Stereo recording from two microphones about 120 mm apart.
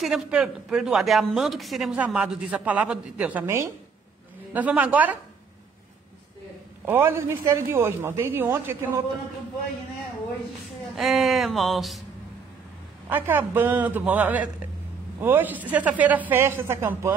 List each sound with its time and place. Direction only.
0.0 s a man's voice: 5° right (ahead or behind)
6.9 s a man's voice: 20° right (ahead or behind)
11.0 s a man's voice: centre (ahead or behind)
13.1 s a woman's voice: 15° right (ahead or behind)